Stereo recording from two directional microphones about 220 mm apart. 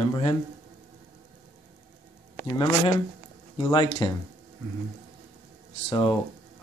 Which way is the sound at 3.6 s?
20° left (ahead or behind).